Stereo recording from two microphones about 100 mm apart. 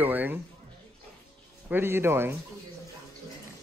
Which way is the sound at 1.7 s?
25° right (ahead or behind).